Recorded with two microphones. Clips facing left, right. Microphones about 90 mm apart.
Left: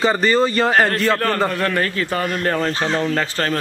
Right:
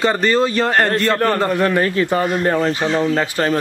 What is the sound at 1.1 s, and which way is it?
Speech, 10° right (ahead or behind).